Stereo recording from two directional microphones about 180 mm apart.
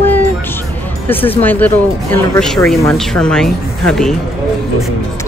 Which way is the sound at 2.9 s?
5° left (ahead or behind).